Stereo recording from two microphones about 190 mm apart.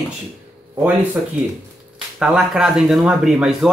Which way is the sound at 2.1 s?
5° right (ahead or behind).